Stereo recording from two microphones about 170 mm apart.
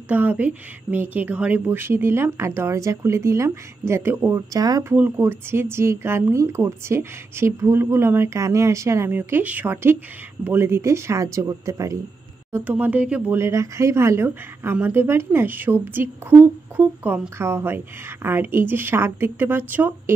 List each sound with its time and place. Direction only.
0.1 s speech: 10° right (ahead or behind)
4.9 s speech: 10° right (ahead or behind)